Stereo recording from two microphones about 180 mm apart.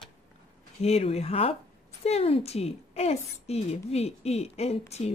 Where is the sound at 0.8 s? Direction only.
35° left (ahead or behind).